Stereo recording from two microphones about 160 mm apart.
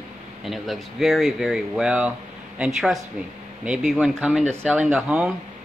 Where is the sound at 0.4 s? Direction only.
Centre (ahead or behind).